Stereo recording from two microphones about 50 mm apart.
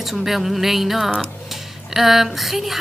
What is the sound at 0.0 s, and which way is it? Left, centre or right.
A woman's voice, centre.